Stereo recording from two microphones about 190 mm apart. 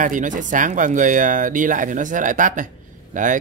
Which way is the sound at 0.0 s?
45° right (ahead or behind).